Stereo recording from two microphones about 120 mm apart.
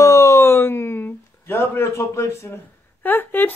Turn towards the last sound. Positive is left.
turn(degrees=15)  # may be behind; listen again after turning